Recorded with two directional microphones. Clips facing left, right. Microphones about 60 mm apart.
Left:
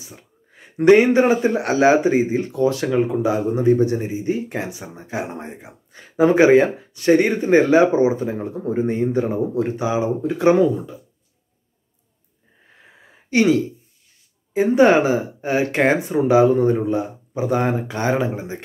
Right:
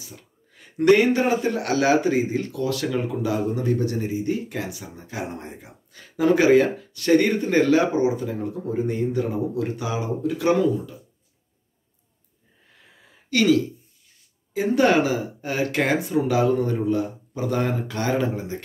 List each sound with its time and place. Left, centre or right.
0.0 s speech: left
12.7 s a sound: left
14.5 s speech: left